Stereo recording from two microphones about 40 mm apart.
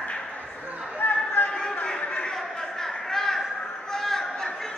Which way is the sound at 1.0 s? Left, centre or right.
Left.